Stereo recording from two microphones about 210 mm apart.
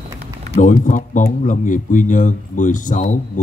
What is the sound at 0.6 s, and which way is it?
Speech, 35° left (ahead or behind).